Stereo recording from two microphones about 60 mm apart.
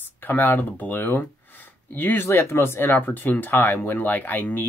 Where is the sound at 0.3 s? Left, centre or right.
Left.